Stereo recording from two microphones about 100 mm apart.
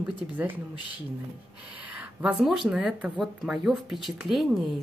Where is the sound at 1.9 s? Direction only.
10° right (ahead or behind).